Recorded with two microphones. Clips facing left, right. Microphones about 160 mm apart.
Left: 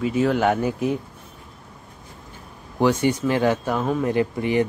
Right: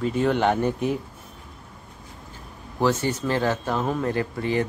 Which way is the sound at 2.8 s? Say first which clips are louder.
Left 4 dB; 15° left (ahead or behind).